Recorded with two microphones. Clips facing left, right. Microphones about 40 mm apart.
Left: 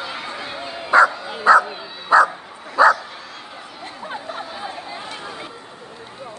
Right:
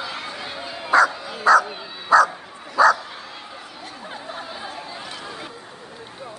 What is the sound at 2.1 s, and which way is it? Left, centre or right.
Bow-wow, left.